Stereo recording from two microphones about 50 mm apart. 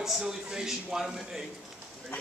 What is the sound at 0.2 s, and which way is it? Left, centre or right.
Speech, centre.